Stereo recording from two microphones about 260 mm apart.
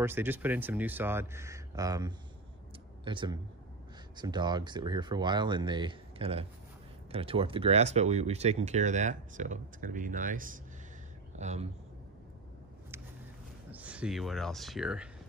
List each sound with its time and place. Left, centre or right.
0.0 s speech: centre; by 11.7 s right
13.7 s speech: centre